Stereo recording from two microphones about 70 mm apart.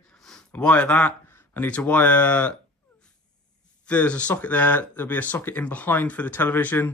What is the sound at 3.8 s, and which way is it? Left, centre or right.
Speech, centre.